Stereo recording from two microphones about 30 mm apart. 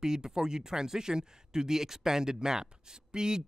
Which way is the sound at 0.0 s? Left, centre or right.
Right.